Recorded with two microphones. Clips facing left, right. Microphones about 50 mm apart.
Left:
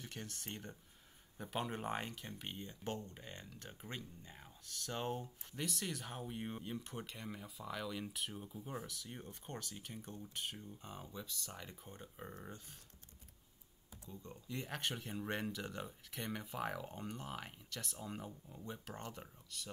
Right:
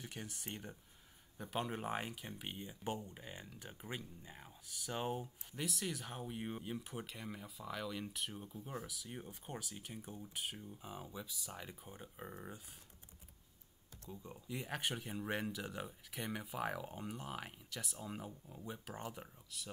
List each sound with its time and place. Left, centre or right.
0.0 s speech: centre
14.1 s speech: centre